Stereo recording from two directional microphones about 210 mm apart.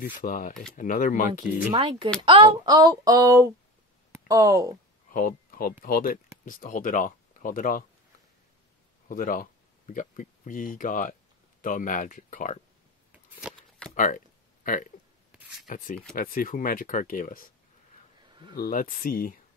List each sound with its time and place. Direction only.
0.0 s speech: 40° left (ahead or behind)
1.7 s speech: 25° right (ahead or behind)
2.2 s a sound: 20° right (ahead or behind)
4.1 s speech: 15° right (ahead or behind)
5.1 s speech: 40° left (ahead or behind)
9.1 s speech: 40° left (ahead or behind)
13.1 s shuffling cards: 5° right (ahead or behind)
13.9 s a sound: 40° left (ahead or behind)
15.6 s speech: 40° left (ahead or behind)
18.5 s speech: 45° left (ahead or behind)